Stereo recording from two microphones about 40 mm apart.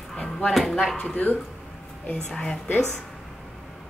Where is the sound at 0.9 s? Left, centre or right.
Left.